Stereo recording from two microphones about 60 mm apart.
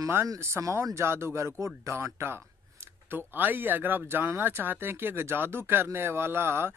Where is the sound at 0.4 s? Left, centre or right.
Right.